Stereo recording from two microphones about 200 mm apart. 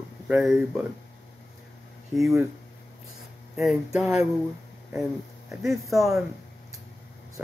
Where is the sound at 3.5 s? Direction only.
Centre (ahead or behind).